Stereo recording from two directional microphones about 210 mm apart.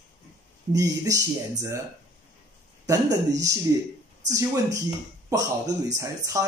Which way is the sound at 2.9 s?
15° right (ahead or behind).